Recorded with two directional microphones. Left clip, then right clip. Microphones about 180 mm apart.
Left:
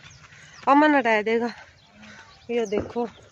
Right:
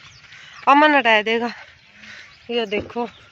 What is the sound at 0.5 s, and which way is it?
Speech, centre (ahead or behind).